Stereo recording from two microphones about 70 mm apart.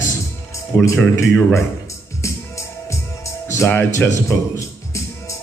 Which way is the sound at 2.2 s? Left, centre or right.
Left.